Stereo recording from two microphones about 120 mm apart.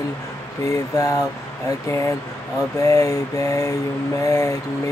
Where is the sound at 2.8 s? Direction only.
25° left (ahead or behind).